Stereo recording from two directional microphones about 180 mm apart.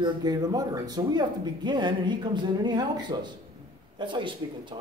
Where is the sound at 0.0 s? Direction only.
20° right (ahead or behind).